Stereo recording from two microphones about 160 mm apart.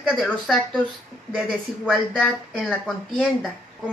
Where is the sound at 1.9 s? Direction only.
Centre (ahead or behind).